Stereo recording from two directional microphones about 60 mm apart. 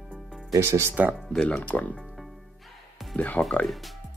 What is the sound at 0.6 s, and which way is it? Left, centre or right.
Speech, right.